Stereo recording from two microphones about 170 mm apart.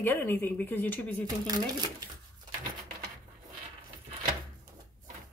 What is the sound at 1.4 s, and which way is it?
Speech, 25° right (ahead or behind).